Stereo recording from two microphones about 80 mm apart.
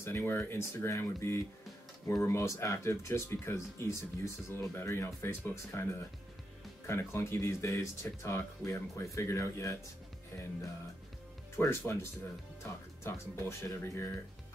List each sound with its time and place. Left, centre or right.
0.0 s speech: left
11.5 s speech: left